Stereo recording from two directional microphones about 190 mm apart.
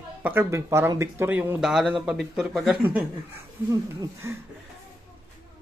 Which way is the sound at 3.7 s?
20° right (ahead or behind).